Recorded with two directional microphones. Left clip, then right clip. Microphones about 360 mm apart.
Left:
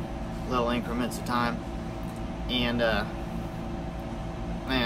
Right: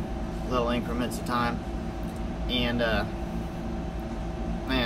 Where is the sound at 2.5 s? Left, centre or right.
Centre.